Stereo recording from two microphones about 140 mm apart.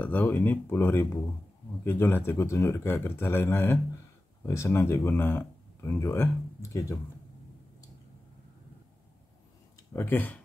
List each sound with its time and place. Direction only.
0.0 s speech: 15° left (ahead or behind)
9.9 s speech: 15° left (ahead or behind)